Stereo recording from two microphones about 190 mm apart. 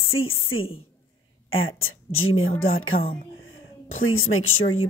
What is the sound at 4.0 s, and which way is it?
Speech, 90° left.